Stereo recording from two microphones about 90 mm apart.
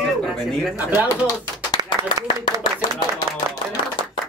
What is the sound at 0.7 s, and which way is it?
Speech, 20° right (ahead or behind).